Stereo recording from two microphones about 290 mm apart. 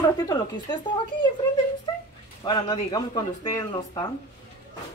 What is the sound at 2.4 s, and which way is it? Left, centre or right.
Speech, centre.